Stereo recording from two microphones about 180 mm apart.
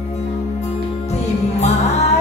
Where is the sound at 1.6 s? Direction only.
40° left (ahead or behind).